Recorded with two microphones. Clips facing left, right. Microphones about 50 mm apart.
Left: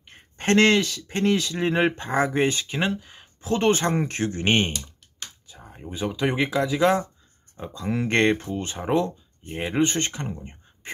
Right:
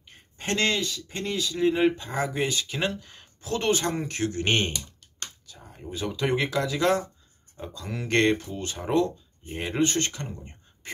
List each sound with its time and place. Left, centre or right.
0.1 s speech: left
2.8 s speech: centre
3.3 s speech: left
4.5 s speech: centre